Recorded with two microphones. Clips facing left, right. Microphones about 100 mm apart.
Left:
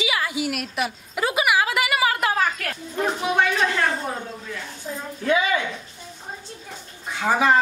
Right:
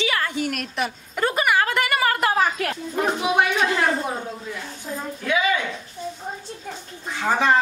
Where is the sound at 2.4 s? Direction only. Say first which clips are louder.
Right 2 dB; 25° right (ahead or behind).